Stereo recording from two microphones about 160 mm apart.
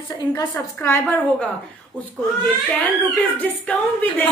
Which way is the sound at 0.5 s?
15° left (ahead or behind).